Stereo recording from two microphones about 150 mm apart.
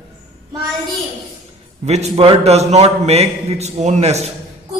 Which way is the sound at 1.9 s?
45° right (ahead or behind).